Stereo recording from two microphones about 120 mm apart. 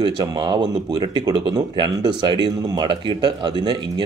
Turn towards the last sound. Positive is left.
turn(degrees=-40)  # may be behind; listen again after turning